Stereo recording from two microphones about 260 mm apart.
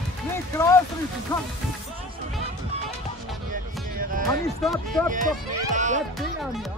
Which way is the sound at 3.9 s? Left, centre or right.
Right.